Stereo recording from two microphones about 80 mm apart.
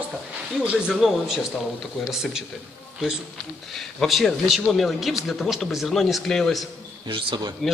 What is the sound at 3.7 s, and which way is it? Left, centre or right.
Speech, centre.